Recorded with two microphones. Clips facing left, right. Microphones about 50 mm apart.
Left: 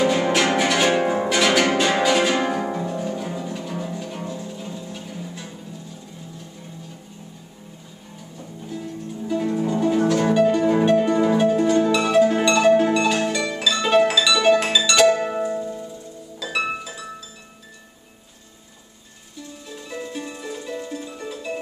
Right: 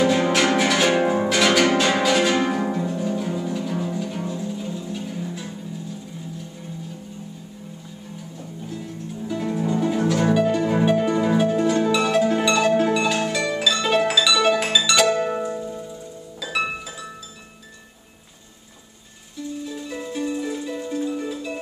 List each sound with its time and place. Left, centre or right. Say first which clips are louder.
0.0 s music: even; centre
8.4 s music: left 2 dB; centre
16.3 s harp: left 1 dB; centre
19.7 s music: right 2 dB; centre